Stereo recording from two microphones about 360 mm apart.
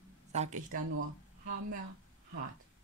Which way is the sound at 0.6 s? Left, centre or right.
Right.